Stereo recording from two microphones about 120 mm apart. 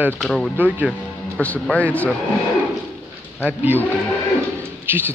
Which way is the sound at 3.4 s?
15° right (ahead or behind).